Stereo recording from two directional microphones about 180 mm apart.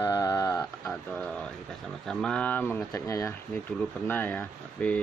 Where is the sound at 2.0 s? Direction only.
5° left (ahead or behind).